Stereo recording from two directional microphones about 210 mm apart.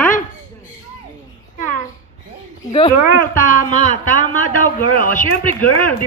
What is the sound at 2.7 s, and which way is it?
Speech, 25° left (ahead or behind).